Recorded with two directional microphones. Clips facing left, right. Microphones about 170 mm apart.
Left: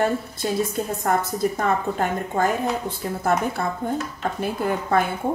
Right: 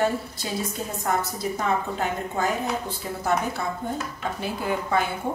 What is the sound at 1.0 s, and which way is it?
A woman's voice, 50° left (ahead or behind).